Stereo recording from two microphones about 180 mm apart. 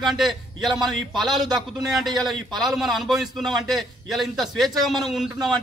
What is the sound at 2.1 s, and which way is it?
Speech, 25° right (ahead or behind).